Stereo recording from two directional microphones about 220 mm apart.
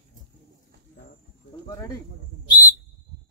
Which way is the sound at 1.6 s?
15° left (ahead or behind).